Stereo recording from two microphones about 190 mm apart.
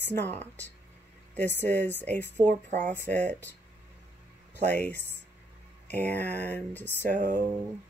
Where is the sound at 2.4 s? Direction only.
45° right (ahead or behind).